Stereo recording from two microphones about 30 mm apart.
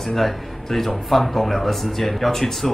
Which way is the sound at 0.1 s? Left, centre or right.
Centre.